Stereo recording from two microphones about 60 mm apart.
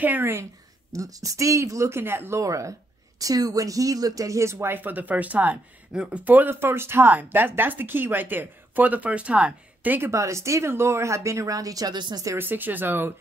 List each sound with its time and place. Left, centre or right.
0.0 s a woman's voice: right
0.9 s speech: right
2.4 s speech: right
3.2 s speech: right
5.9 s speech: centre
6.2 s a woman's voice: right
6.5 s speech: right
10.1 s speech: right
12.4 s speech: right